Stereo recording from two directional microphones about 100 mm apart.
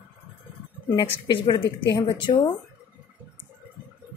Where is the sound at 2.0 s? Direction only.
50° left (ahead or behind).